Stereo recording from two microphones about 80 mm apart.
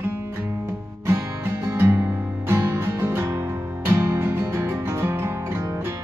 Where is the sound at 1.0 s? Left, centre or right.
Right.